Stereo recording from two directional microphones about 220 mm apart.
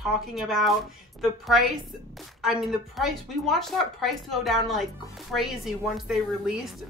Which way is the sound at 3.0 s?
Centre (ahead or behind).